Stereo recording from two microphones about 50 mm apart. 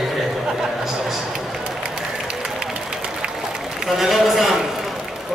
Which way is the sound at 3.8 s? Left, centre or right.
Centre.